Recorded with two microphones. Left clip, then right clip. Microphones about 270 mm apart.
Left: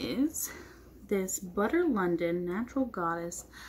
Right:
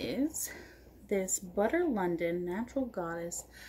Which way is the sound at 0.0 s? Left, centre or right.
Centre.